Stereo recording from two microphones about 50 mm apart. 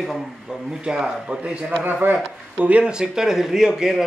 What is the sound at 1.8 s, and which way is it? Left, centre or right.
Speech, right.